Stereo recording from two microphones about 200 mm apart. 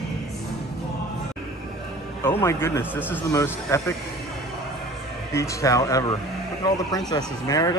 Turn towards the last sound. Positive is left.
turn(degrees=20)  # may be behind; listen again after turning